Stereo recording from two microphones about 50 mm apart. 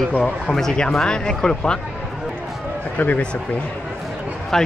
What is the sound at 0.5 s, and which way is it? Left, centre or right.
Speech, centre.